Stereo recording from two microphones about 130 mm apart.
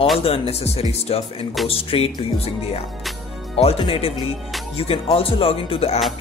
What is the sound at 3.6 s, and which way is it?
Speech, 50° left (ahead or behind).